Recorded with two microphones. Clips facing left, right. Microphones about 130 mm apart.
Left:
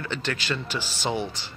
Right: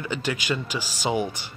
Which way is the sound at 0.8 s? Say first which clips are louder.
Right 1 dB; 40° right (ahead or behind).